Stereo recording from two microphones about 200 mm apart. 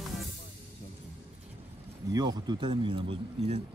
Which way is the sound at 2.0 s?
20° right (ahead or behind).